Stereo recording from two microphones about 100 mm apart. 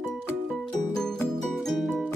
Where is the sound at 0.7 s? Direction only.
5° left (ahead or behind).